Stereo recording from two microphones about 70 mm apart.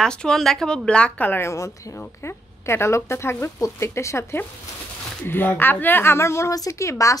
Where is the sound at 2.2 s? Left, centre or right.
Left.